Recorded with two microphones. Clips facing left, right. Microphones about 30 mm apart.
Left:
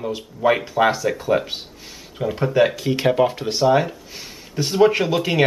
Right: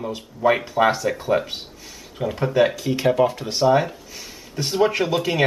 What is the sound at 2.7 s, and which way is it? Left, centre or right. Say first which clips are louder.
Speech: left 1 dB; left.